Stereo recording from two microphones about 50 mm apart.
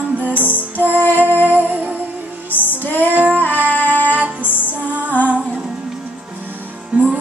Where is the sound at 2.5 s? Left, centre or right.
Left.